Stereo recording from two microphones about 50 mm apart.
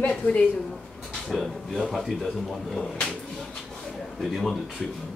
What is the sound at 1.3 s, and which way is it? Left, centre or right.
Speech, centre.